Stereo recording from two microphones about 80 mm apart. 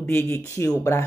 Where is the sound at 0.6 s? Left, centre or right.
Left.